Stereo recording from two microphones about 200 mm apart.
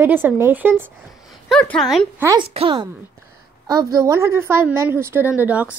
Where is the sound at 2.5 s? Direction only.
25° right (ahead or behind).